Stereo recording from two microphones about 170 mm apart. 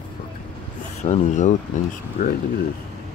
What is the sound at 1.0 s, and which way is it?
Speech, 45° left (ahead or behind).